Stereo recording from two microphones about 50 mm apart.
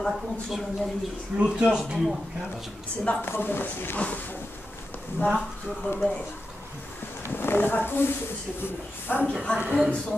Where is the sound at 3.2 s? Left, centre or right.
Left.